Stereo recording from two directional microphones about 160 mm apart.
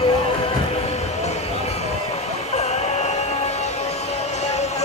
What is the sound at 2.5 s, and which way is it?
Music, 45° left (ahead or behind).